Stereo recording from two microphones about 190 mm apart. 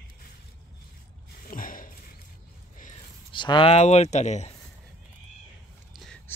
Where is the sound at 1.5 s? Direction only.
45° left (ahead or behind).